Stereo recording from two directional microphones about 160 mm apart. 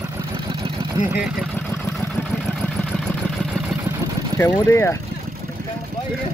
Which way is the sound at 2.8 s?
Centre (ahead or behind).